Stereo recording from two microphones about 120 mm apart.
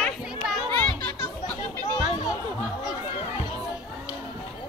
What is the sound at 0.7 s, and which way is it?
Children playing, 20° left (ahead or behind).